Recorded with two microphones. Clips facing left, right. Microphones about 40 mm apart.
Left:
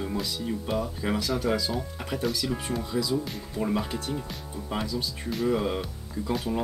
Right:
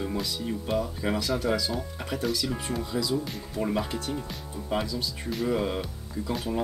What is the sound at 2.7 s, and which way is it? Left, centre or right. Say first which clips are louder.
Speech: even; centre.